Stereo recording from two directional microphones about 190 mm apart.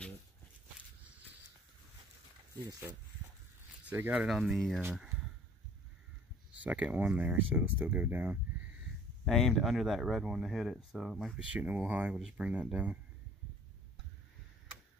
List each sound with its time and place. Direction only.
2.5 s speech: 15° right (ahead or behind); by 4.8 s centre (ahead or behind)
6.6 s speech: 5° right (ahead or behind)